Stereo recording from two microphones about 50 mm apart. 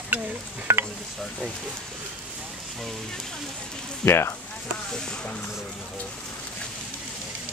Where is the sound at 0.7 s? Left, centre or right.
Right.